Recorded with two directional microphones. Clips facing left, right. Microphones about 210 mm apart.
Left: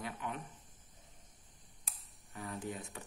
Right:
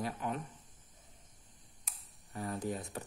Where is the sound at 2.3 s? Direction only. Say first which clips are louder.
Right 5 dB; 40° right (ahead or behind).